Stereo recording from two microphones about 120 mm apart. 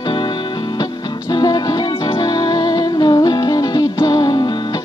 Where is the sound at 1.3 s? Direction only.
35° left (ahead or behind).